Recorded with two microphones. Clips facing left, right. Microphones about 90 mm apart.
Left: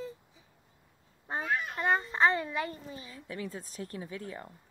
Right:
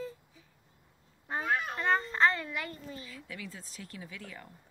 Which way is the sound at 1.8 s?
15° left (ahead or behind).